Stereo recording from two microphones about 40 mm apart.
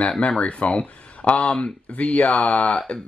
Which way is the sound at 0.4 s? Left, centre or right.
Left.